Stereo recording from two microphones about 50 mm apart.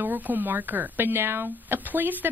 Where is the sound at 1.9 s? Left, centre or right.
Right.